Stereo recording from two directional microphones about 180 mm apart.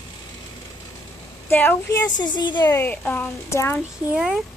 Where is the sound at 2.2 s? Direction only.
25° left (ahead or behind).